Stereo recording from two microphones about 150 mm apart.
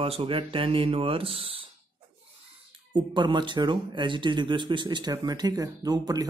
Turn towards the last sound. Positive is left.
turn(degrees=-25)  # may be behind; listen again after turning